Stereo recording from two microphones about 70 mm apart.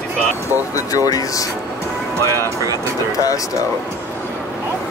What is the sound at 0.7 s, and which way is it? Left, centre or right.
Speech, left.